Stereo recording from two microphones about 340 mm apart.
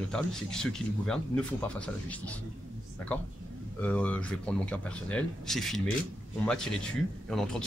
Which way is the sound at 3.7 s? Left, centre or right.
Centre.